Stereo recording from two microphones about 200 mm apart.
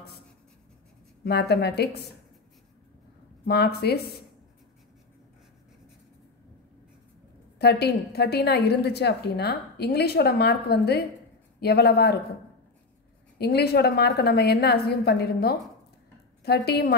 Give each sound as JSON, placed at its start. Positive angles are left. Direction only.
{"t": 1.2, "sound": "a woman's voice", "side_deg": 55}
{"t": 3.4, "sound": "a woman's voice", "side_deg": 55}
{"t": 7.5, "sound": "a woman's voice", "side_deg": 50}
{"t": 13.4, "sound": "a woman's voice", "side_deg": 55}